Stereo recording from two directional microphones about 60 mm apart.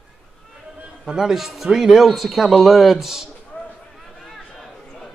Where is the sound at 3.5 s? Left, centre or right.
Left.